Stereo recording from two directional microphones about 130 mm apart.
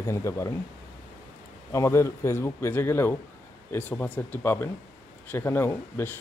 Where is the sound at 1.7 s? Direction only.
20° left (ahead or behind).